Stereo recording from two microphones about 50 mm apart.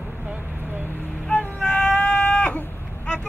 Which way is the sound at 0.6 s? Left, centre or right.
Right.